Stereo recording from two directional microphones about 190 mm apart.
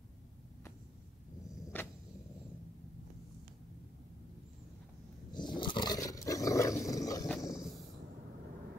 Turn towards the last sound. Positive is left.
turn(degrees=0)  # may be behind; listen again after turning